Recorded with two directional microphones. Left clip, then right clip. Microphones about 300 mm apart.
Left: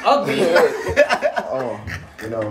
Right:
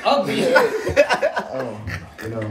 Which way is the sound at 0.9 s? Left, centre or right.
Centre.